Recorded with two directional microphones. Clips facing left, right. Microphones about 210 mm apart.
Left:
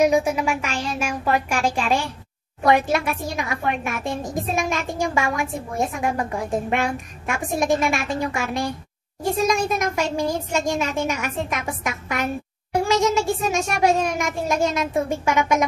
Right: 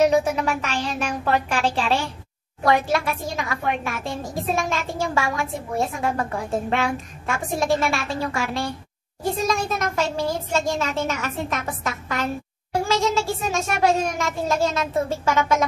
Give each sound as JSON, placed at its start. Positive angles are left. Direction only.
{"t": 0.0, "sound": "a woman's voice", "side_deg": 10}